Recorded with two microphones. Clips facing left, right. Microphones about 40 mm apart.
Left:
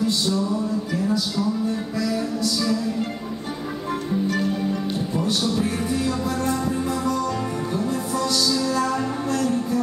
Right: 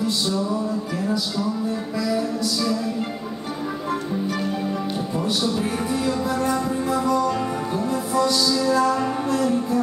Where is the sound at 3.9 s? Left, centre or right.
Centre.